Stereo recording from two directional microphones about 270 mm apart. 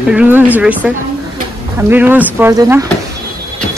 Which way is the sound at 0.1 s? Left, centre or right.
Centre.